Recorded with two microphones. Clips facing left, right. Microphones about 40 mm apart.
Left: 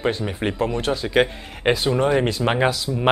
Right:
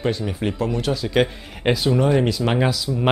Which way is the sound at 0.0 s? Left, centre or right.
Left.